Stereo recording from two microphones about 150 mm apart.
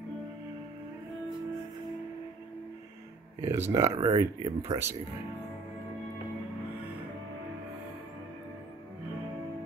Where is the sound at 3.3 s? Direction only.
15° right (ahead or behind).